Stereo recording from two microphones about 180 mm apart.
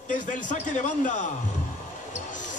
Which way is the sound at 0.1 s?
45° left (ahead or behind).